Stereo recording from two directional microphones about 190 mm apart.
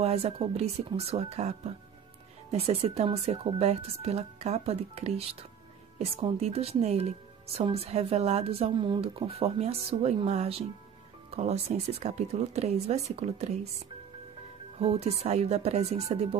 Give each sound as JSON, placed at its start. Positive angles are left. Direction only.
{"t": 0.0, "sound": "a woman's voice", "side_deg": -30}
{"t": 14.8, "sound": "a woman's voice", "side_deg": -30}